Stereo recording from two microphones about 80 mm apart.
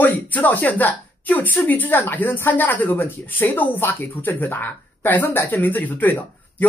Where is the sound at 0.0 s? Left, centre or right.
Left.